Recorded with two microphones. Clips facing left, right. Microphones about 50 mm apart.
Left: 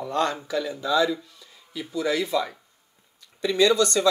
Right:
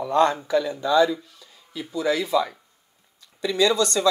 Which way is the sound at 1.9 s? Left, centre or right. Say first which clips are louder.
Right 1 dB; centre.